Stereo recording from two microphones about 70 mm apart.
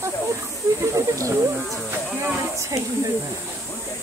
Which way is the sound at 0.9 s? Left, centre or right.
Right.